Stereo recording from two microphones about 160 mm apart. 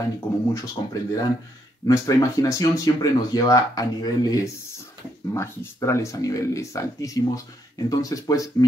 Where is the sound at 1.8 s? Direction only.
20° left (ahead or behind).